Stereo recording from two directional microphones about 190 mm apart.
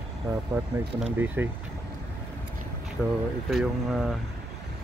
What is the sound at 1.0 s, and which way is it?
Speech, 10° right (ahead or behind).